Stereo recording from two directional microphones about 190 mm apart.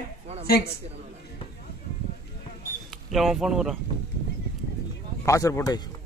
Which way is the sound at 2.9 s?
Centre (ahead or behind).